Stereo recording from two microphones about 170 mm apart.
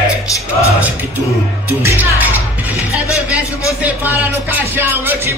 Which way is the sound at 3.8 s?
10° right (ahead or behind).